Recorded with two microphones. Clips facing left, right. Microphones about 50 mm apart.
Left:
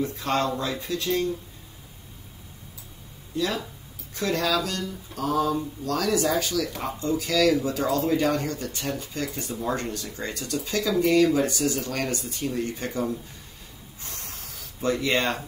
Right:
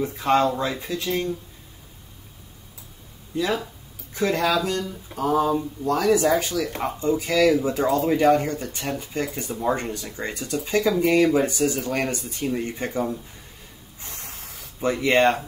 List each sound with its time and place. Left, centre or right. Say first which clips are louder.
0.0 s speech: right 5 dB; right
3.3 s speech: right 3 dB; right
14.0 s a sound: right 1 dB; right